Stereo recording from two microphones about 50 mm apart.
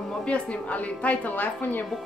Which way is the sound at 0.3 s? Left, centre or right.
Left.